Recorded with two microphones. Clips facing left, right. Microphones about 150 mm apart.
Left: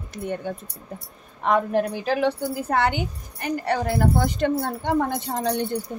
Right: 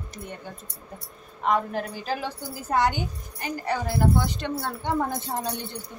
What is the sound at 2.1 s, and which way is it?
A woman's voice, 65° left (ahead or behind).